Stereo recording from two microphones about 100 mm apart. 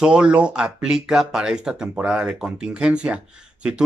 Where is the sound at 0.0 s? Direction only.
10° right (ahead or behind).